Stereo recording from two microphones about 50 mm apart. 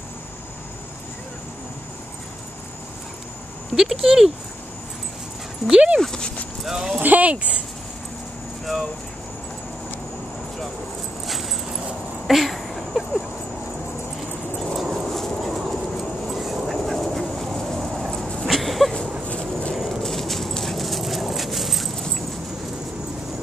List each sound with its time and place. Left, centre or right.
3.7 s speech: centre
5.7 s speech: right
5.9 s speech: centre
6.6 s speech: centre
7.0 s speech: right
12.3 s a sound: centre
14.6 s dog: centre
16.7 s duck: centre
18.5 s a sound: centre
19.2 s dog: left
20.0 s dog: centre